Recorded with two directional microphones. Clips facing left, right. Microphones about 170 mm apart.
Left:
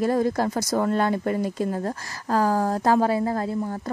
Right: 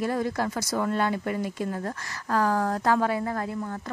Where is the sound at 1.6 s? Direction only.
25° left (ahead or behind).